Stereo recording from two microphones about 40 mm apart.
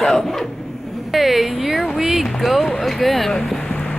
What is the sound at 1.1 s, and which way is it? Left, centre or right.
A woman's voice, centre.